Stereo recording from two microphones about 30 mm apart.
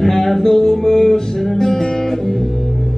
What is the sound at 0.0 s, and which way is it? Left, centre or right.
Music, centre.